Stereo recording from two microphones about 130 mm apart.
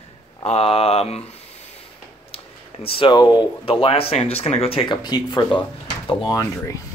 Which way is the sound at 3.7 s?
45° left (ahead or behind).